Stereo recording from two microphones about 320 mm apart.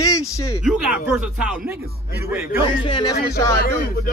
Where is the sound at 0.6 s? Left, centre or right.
Centre.